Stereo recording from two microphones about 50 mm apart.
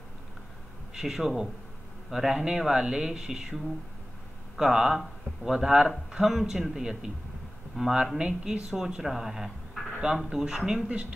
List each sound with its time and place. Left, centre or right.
0.9 s speech: centre
10.9 s speech: right